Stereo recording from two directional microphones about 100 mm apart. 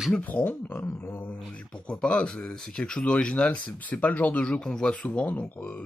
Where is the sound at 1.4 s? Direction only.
10° left (ahead or behind).